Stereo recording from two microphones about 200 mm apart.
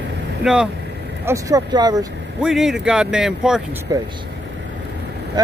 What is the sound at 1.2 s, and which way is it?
Speech, 15° right (ahead or behind).